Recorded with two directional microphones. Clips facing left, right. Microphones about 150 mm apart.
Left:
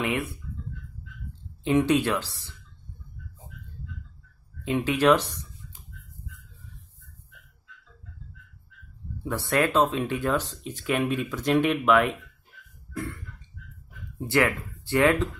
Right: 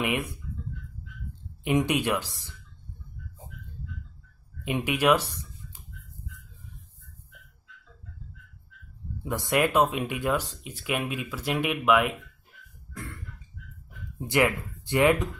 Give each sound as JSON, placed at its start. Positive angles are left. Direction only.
{"t": 0.0, "sound": "speech", "side_deg": -15}
{"t": 1.6, "sound": "speech", "side_deg": -15}
{"t": 4.6, "sound": "speech", "side_deg": -15}
{"t": 9.2, "sound": "speech", "side_deg": -15}
{"t": 14.2, "sound": "speech", "side_deg": -15}